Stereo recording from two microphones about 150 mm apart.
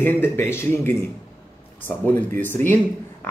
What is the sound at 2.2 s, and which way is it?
Speech, 10° left (ahead or behind).